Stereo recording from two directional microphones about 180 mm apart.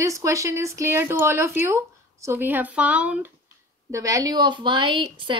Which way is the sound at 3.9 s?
20° right (ahead or behind).